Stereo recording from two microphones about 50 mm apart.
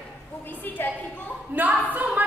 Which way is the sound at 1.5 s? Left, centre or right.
Right.